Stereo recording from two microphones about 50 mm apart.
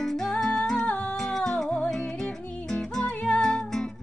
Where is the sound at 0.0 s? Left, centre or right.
Centre.